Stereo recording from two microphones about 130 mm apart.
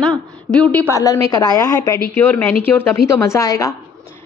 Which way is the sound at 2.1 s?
15° left (ahead or behind).